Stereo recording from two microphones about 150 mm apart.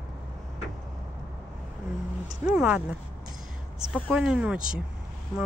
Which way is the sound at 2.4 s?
5° right (ahead or behind).